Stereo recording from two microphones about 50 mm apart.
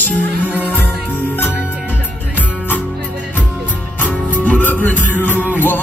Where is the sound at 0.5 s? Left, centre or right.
Right.